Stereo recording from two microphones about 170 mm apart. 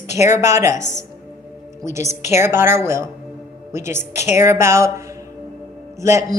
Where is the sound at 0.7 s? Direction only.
45° left (ahead or behind).